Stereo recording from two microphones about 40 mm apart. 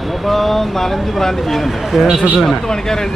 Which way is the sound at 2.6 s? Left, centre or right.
Centre.